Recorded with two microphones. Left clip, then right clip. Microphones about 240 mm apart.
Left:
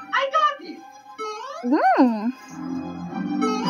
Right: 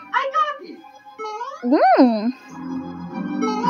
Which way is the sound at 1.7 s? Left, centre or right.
Centre.